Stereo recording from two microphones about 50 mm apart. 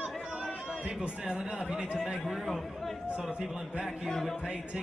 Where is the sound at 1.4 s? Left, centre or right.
Centre.